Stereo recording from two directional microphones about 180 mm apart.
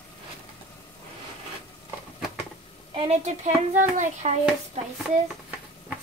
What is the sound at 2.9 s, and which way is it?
Speech, 35° right (ahead or behind).